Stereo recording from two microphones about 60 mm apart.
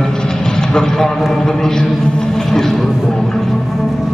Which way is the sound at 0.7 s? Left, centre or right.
Centre.